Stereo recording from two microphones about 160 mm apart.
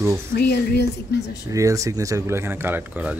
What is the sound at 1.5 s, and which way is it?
Speech, 20° right (ahead or behind).